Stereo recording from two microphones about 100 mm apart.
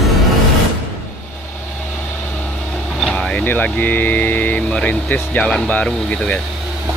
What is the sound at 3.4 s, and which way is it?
Speech, 15° left (ahead or behind).